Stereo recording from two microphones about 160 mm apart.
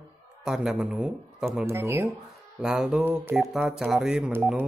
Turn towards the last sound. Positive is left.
turn(degrees=-15)  # may be behind; listen again after turning